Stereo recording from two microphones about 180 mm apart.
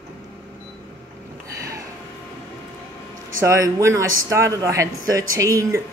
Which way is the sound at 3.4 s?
15° right (ahead or behind).